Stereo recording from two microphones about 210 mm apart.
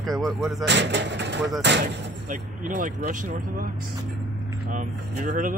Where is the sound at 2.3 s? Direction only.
40° right (ahead or behind).